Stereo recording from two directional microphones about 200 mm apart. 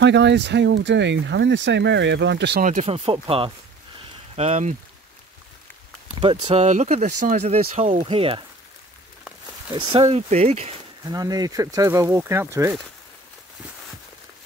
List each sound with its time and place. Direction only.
0.0 s speech: 60° right (ahead or behind)
2.6 s speech: 35° right (ahead or behind)
6.1 s speech: 30° right (ahead or behind)
9.7 s speech: 30° right (ahead or behind)
11.1 s speech: 20° right (ahead or behind)